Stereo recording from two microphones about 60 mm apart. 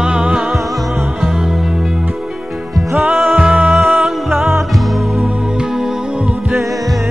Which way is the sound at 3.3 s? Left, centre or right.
Right.